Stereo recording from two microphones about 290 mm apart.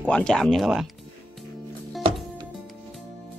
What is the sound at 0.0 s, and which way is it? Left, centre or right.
Speech, centre.